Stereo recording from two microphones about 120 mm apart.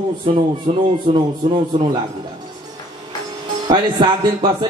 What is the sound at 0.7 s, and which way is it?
Speech, 35° right (ahead or behind).